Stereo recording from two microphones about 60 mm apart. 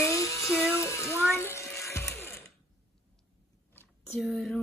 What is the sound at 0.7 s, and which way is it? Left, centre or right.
Music, left.